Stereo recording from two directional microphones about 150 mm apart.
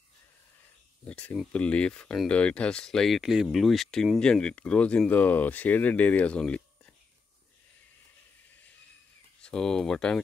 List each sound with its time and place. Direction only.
1.0 s speech: 10° left (ahead or behind)
9.4 s speech: 5° left (ahead or behind)